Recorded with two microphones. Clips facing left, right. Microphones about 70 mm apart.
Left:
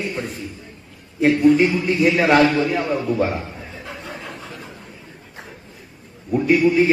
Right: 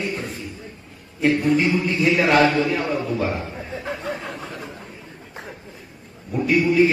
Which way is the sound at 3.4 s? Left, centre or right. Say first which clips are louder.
Right 2 dB; right.